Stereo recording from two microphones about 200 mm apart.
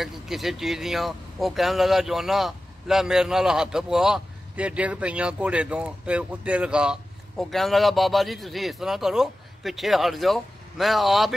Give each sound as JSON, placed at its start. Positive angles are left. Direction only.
{"t": 0.0, "sound": "speech", "side_deg": 0}